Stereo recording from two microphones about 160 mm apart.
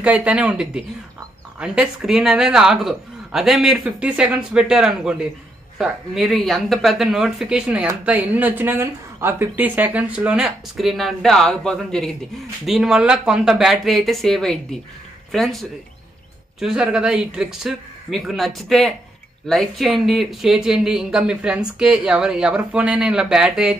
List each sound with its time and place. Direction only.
0.0 s speech: 10° right (ahead or behind)